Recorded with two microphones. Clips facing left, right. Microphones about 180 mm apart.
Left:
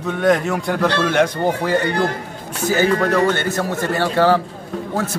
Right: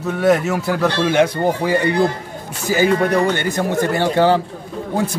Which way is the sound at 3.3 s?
15° right (ahead or behind).